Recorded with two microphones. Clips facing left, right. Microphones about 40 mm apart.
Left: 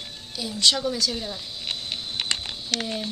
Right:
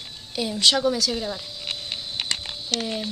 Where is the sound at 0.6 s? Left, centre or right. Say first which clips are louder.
Right 2 dB; centre.